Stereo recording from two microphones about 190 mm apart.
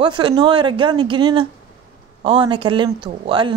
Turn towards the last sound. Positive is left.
turn(degrees=-25)  # may be behind; listen again after turning